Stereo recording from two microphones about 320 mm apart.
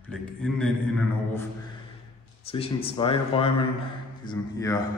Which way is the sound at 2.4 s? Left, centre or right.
Centre.